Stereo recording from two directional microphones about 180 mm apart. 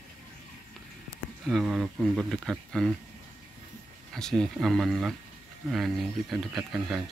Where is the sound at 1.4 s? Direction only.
Centre (ahead or behind).